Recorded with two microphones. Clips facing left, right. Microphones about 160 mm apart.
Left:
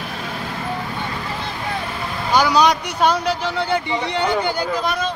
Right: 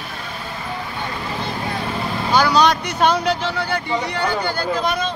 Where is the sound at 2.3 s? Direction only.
15° left (ahead or behind).